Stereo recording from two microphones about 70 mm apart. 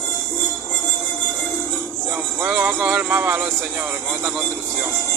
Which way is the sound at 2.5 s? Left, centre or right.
Right.